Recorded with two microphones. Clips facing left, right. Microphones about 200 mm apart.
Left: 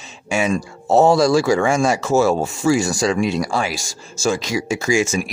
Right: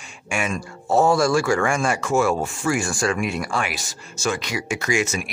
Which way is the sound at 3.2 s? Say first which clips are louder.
Left 5 dB; 35° left (ahead or behind).